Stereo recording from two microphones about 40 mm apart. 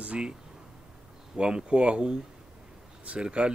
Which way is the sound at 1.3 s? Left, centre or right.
Right.